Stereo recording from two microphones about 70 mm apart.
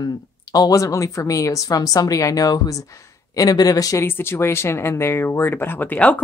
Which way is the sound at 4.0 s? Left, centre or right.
Left.